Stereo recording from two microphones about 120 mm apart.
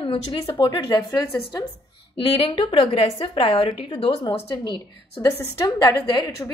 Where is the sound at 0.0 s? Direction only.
45° left (ahead or behind).